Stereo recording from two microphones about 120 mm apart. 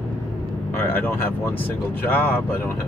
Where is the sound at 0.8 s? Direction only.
15° left (ahead or behind).